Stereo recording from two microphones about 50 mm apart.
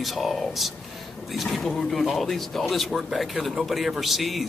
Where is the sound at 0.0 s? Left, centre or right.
Centre.